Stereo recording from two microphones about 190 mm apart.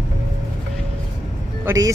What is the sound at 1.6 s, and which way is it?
Speech, 15° right (ahead or behind).